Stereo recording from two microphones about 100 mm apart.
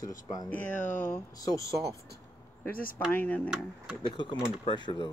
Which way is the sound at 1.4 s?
35° left (ahead or behind).